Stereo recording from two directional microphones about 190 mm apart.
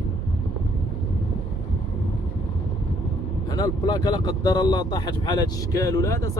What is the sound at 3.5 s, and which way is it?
Speech, 20° left (ahead or behind).